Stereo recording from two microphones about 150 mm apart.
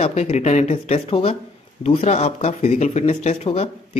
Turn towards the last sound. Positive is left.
turn(degrees=45)  # may be behind; listen again after turning